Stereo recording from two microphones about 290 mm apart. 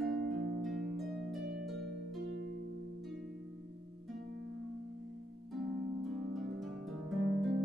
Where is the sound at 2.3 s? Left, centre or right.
Right.